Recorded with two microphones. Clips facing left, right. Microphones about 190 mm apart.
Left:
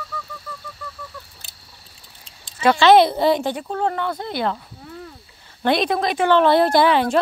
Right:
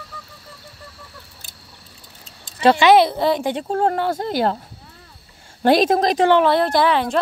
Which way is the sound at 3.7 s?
45° right (ahead or behind).